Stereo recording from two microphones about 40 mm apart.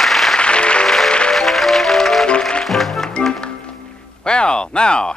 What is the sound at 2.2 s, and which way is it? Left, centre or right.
Music, left.